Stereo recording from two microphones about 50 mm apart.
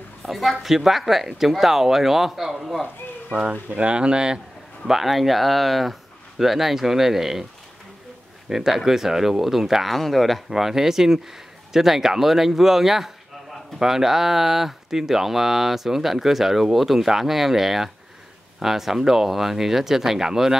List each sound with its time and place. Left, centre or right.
0.2 s speech: centre
3.3 s speech: right
4.8 s speech: centre
8.5 s speech: centre